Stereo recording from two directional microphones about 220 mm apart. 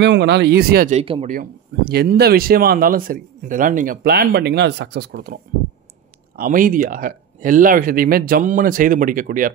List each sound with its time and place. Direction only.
0.0 s speech: 50° right (ahead or behind)
0.9 s speech: 30° right (ahead or behind)
1.3 s speech: 45° right (ahead or behind)